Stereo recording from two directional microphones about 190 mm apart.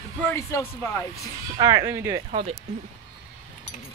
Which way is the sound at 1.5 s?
20° right (ahead or behind).